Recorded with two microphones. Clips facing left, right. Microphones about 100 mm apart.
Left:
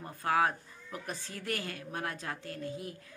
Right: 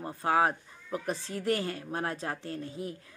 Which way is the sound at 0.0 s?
25° right (ahead or behind).